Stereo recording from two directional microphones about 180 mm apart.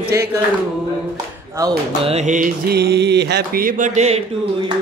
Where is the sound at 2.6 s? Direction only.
65° right (ahead or behind); by 4.2 s 40° right (ahead or behind).